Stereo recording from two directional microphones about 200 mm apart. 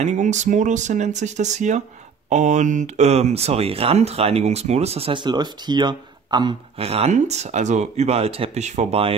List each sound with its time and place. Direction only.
0.0 s speech: 35° right (ahead or behind)